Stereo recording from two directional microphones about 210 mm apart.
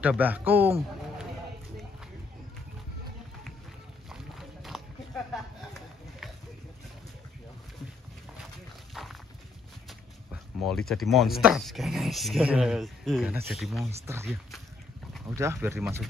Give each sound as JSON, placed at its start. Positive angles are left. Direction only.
{"t": 0.0, "sound": "speech", "side_deg": -5}
{"t": 4.1, "sound": "a sound", "side_deg": 0}
{"t": 8.9, "sound": "dog", "side_deg": 0}
{"t": 10.6, "sound": "speech", "side_deg": 0}
{"t": 14.0, "sound": "speech", "side_deg": -10}